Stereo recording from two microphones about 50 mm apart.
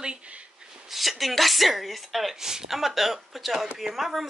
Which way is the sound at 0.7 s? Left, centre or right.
Centre.